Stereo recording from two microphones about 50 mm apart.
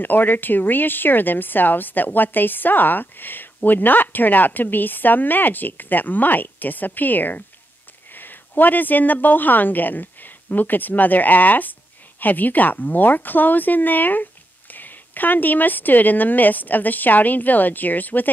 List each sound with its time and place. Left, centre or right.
0.0 s a woman's voice: left